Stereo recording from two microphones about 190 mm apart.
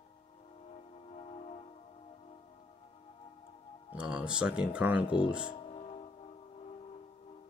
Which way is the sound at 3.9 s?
5° right (ahead or behind).